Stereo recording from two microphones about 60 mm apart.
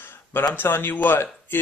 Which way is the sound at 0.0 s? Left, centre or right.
Left.